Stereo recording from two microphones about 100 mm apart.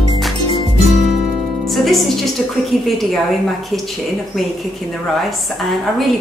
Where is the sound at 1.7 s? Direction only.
Centre (ahead or behind).